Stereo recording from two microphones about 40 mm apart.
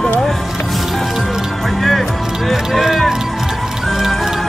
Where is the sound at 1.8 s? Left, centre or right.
Centre.